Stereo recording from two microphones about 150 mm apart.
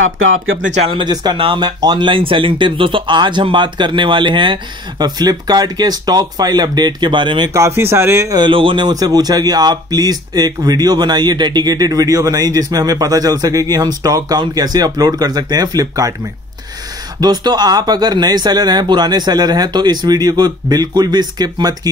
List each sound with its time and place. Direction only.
0.8 s speech: 30° right (ahead or behind)
7.5 s a man's voice: 20° right (ahead or behind)
17.2 s a man's voice: 25° right (ahead or behind)